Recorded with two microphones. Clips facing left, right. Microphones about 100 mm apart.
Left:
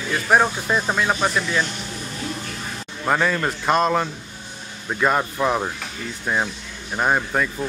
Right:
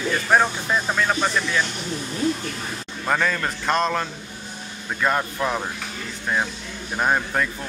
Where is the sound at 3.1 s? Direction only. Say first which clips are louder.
Left 2 dB; 5° left (ahead or behind).